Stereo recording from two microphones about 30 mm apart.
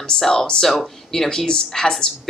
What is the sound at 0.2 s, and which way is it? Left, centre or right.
A woman's voice, centre.